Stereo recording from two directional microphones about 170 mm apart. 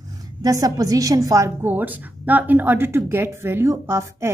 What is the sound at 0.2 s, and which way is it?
A woman's voice, 20° right (ahead or behind).